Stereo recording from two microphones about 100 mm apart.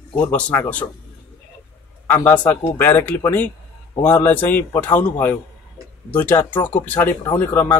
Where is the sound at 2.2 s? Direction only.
20° left (ahead or behind).